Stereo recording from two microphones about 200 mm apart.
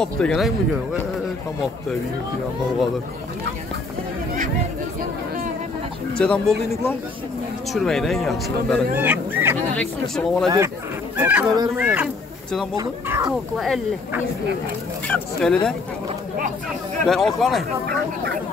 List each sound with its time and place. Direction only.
0.0 s speech: 5° left (ahead or behind)
6.1 s speech: 5° left (ahead or behind)
8.9 s speech: 10° right (ahead or behind)
9.8 s speech: centre (ahead or behind)
11.1 s speech: 10° right (ahead or behind)
11.5 s speech: 20° right (ahead or behind)
11.8 s speech: 5° right (ahead or behind)
15.0 s speech: 5° left (ahead or behind)
17.0 s speech: centre (ahead or behind)
17.8 s speech: 50° right (ahead or behind)